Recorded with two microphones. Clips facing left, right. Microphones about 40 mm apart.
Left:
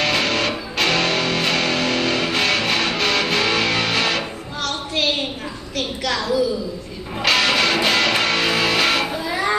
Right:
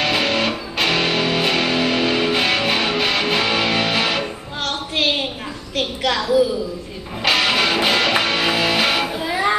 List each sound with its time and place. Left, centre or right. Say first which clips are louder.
0.0 s music: right 1 dB; centre
4.6 s a sound: right 1 dB; right
7.2 s music: even; centre
9.3 s children playing: right 3 dB; centre